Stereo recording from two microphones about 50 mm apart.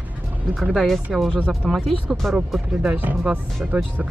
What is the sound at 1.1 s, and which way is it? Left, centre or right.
Speech, centre.